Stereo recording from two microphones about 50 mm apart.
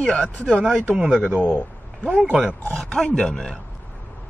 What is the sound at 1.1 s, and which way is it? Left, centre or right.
Speech, centre.